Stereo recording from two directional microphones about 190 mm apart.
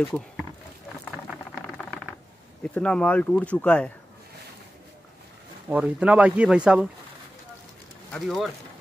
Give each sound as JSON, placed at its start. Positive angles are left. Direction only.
{"t": 1.5, "sound": "a sound", "side_deg": 5}
{"t": 2.6, "sound": "speech", "side_deg": 5}
{"t": 5.7, "sound": "speech", "side_deg": -5}
{"t": 8.1, "sound": "speech", "side_deg": 0}